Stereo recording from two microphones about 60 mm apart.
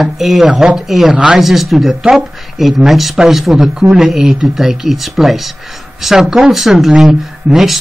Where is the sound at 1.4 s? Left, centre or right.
Centre.